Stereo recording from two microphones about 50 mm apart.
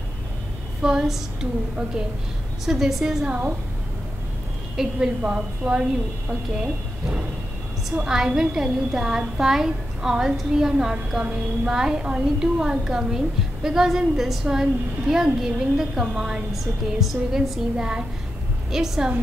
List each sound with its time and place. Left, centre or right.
0.8 s a woman's voice: centre
2.6 s a woman's voice: centre
3.3 s a woman's voice: right
4.8 s a woman's voice: centre
5.2 s a woman's voice: right
7.9 s a woman's voice: centre
17.7 s a woman's voice: centre